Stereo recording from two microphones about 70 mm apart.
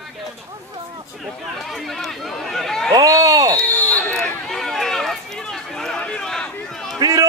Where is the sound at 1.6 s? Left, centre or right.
Centre.